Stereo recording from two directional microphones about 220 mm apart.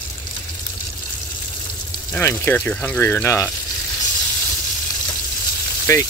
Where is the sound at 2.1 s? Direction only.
10° left (ahead or behind).